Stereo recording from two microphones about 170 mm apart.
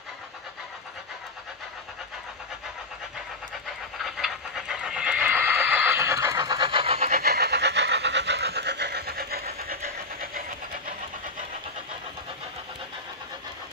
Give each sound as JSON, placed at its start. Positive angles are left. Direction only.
{"t": 4.0, "sound": "train", "side_deg": 0}
{"t": 7.1, "sound": "train", "side_deg": -65}